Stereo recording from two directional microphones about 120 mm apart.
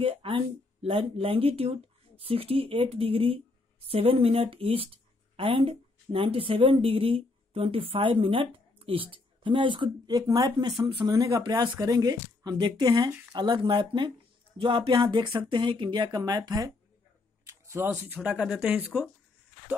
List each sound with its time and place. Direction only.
0.0 s a woman's voice: 50° right (ahead or behind)
17.5 s speech: 20° right (ahead or behind)